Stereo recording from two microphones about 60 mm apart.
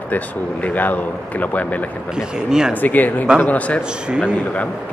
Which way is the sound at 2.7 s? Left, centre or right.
Left.